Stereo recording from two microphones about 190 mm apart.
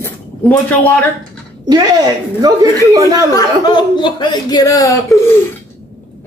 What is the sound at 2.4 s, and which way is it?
Speech, 20° right (ahead or behind).